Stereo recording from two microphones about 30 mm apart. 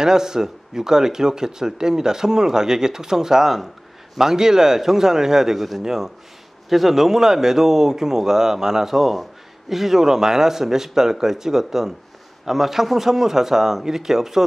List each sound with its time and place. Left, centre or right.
0.0 s a man's voice: right
6.7 s a man's voice: centre
8.9 s a man's voice: centre